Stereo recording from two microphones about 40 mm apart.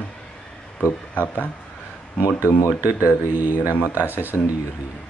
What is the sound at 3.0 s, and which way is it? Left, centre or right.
Speech, right.